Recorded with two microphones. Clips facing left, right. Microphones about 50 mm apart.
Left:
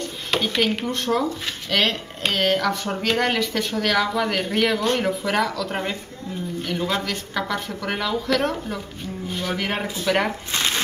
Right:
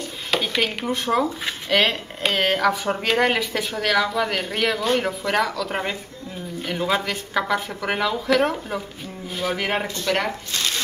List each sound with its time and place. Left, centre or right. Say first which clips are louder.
0.0 s speech: even; centre
9.8 s speech: left 1 dB; centre
10.5 s shuffling cards: left 2 dB; left